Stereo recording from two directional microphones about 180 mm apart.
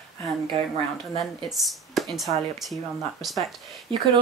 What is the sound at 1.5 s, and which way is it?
Speech, centre (ahead or behind).